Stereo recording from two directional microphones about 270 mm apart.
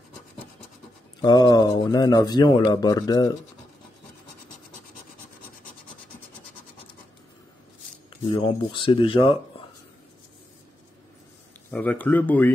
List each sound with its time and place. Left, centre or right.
1.2 s speech: centre
8.1 s speech: centre
11.7 s speech: centre